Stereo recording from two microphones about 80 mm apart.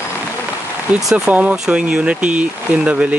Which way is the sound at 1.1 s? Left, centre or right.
Centre.